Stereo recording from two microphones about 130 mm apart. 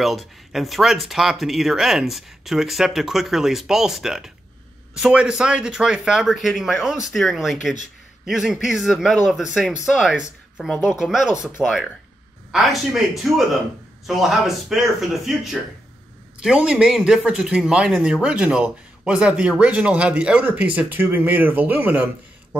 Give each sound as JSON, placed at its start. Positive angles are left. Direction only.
{"t": 0.0, "sound": "speech", "side_deg": 0}